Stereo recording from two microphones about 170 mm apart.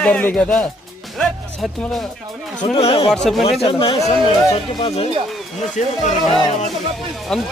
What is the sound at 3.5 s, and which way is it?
Speech, 35° left (ahead or behind).